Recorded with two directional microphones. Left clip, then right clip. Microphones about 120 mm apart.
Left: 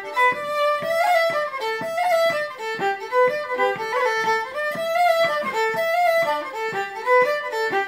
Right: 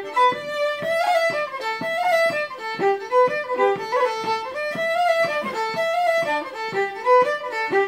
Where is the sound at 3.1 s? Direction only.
Centre (ahead or behind).